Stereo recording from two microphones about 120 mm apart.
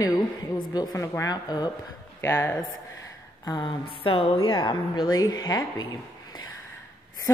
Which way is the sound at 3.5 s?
35° left (ahead or behind).